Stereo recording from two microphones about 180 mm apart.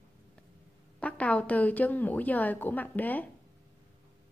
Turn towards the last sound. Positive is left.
turn(degrees=10)  # may be behind; listen again after turning